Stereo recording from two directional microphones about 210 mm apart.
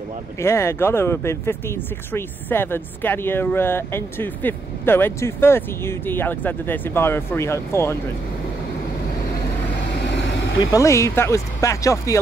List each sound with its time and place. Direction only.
0.4 s speech: 10° left (ahead or behind)
10.6 s speech: 15° left (ahead or behind)